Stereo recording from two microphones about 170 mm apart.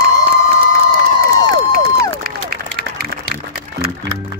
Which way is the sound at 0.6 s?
60° right (ahead or behind).